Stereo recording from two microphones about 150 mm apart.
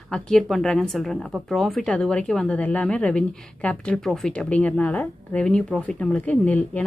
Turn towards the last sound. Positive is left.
turn(degrees=10)  # may be behind; listen again after turning